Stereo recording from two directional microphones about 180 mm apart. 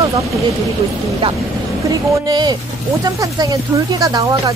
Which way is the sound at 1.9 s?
20° right (ahead or behind).